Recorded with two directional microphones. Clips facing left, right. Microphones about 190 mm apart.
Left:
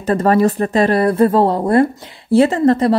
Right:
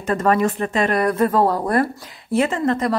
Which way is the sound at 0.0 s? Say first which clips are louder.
Left 5 dB; 35° left (ahead or behind).